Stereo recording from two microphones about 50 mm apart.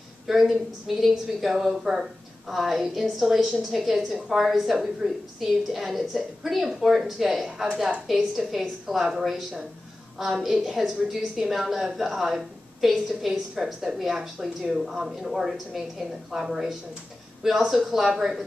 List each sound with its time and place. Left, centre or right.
0.3 s a woman's voice: centre